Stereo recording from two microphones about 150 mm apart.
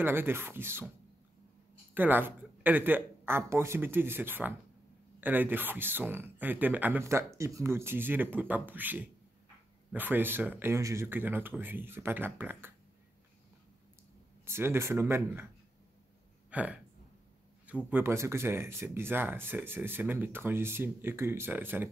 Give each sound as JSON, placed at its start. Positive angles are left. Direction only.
{"t": 0.0, "sound": "speech", "side_deg": -15}
{"t": 2.0, "sound": "speech", "side_deg": -15}
{"t": 14.4, "sound": "speech", "side_deg": -15}
{"t": 16.4, "sound": "speech", "side_deg": -10}